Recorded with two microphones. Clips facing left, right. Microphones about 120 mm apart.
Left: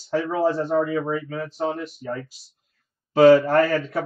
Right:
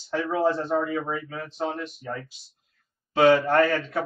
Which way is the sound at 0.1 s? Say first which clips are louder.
Left 2 dB; 35° left (ahead or behind).